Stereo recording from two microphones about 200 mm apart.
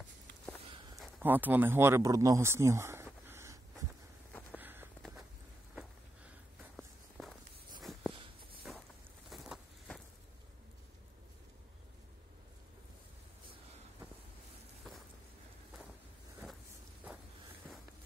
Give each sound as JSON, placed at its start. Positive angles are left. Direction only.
{"t": 1.2, "sound": "speech", "side_deg": -10}
{"t": 4.3, "sound": "walk", "side_deg": 10}
{"t": 4.6, "sound": "walk", "side_deg": -10}
{"t": 6.8, "sound": "walk", "side_deg": 0}
{"t": 8.1, "sound": "a sound", "side_deg": -25}
{"t": 9.3, "sound": "a sound", "side_deg": 0}
{"t": 17.0, "sound": "walk", "side_deg": -5}